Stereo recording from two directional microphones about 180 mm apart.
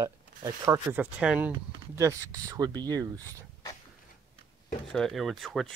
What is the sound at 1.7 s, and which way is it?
Speech, 20° right (ahead or behind).